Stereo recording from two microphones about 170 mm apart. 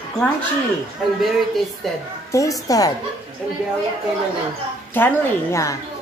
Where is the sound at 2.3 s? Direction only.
20° left (ahead or behind).